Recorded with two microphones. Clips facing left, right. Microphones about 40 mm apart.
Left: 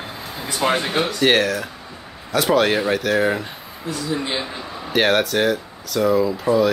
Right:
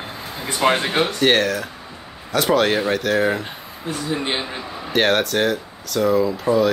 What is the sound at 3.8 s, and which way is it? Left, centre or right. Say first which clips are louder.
Speech: right 1 dB; right.